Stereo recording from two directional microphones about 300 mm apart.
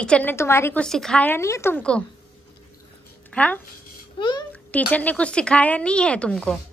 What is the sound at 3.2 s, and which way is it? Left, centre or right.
A child's voice, centre.